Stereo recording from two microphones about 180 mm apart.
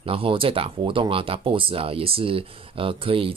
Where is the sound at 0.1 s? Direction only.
30° right (ahead or behind).